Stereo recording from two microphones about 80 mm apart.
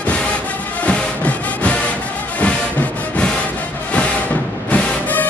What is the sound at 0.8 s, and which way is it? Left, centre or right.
Music, centre.